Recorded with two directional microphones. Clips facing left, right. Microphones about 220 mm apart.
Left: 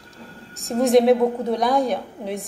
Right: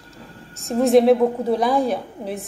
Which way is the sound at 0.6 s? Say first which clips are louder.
Right 1 dB; centre (ahead or behind).